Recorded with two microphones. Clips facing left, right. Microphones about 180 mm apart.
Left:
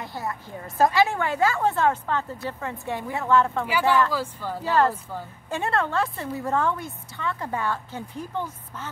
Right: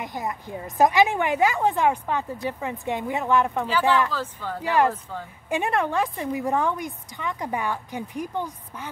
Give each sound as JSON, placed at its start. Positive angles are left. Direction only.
{"t": 0.0, "sound": "a woman's voice", "side_deg": -15}
{"t": 4.1, "sound": "speech", "side_deg": 10}
{"t": 4.6, "sound": "a woman's voice", "side_deg": -15}